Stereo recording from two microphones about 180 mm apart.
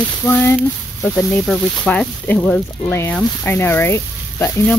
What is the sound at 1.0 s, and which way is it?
Speech, 5° left (ahead or behind).